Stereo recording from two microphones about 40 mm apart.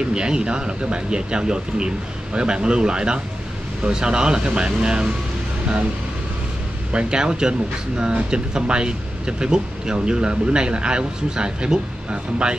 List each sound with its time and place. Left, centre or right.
0.1 s speech: right
6.9 s speech: right